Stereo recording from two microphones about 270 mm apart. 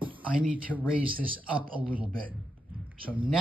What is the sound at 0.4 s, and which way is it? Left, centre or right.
Speech, centre.